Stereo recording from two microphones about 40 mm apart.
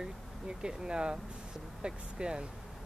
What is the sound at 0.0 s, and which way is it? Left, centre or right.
Speech, centre.